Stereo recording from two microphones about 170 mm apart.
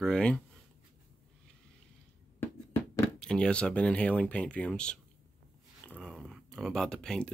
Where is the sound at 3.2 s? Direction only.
5° left (ahead or behind).